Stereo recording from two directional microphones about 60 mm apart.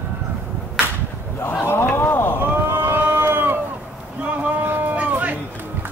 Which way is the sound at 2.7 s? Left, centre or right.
Right.